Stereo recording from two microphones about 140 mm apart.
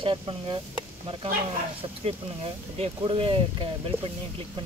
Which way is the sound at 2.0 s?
45° right (ahead or behind).